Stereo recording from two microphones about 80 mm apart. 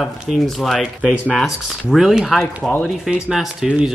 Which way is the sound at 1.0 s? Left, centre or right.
Centre.